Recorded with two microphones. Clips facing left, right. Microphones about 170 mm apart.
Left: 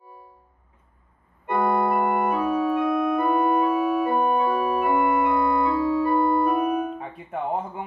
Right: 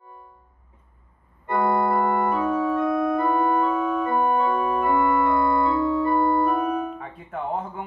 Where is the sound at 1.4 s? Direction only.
20° left (ahead or behind).